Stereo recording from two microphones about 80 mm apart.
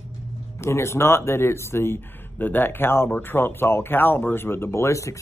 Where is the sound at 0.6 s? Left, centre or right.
Left.